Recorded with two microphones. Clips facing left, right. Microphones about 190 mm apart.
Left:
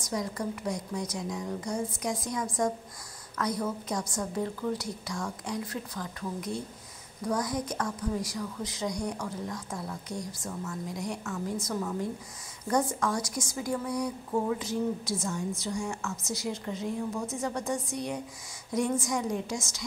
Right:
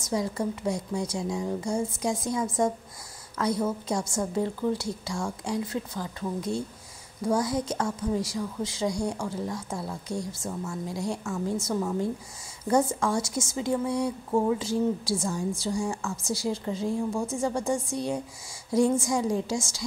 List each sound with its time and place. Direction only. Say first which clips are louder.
0.0 s a woman's voice: right 4 dB; 25° right (ahead or behind)